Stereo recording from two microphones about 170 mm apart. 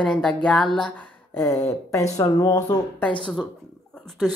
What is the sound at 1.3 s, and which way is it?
Speech, 15° left (ahead or behind).